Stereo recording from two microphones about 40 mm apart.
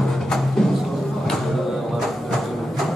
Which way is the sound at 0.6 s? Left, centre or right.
Centre.